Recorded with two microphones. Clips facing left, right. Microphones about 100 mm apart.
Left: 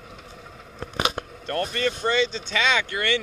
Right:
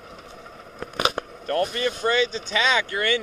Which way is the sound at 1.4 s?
5° right (ahead or behind).